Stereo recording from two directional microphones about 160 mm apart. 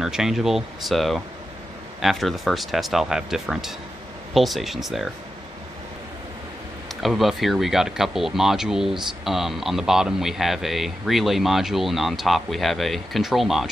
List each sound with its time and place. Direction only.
0.0 s speech: 5° right (ahead or behind)
7.0 s speech: centre (ahead or behind)